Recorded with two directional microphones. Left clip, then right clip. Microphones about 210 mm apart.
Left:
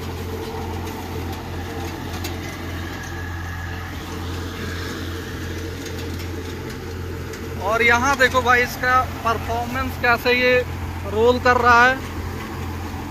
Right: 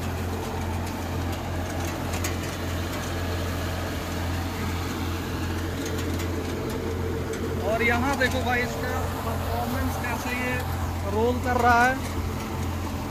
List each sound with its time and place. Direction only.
7.7 s speech: 10° right (ahead or behind)
10.0 s speech: 15° left (ahead or behind)
11.2 s speech: centre (ahead or behind)